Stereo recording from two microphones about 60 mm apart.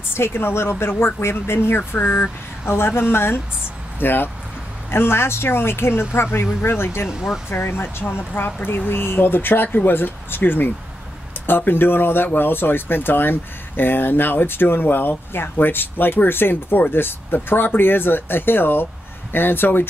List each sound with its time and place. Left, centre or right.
0.1 s speech: left
7.1 s speech: centre
7.4 s speech: left